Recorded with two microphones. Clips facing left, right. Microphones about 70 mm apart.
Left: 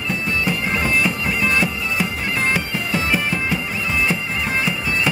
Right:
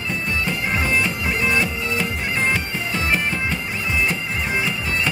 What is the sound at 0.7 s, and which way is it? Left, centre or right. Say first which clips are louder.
Bagpipes: even; centre.